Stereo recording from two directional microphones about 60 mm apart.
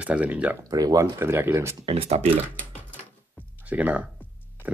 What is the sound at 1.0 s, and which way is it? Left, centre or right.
Speech, right.